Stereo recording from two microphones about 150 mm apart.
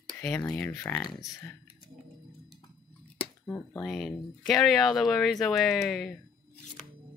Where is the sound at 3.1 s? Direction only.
15° left (ahead or behind).